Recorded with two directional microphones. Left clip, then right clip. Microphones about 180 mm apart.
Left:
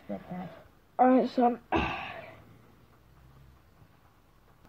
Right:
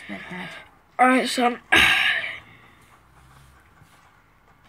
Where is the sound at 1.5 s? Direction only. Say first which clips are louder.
Right 14 dB; centre (ahead or behind).